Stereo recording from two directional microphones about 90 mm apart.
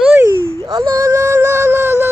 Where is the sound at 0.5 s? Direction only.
40° right (ahead or behind).